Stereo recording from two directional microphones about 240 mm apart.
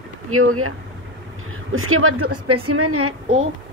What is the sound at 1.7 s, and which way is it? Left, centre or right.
A woman's voice, right.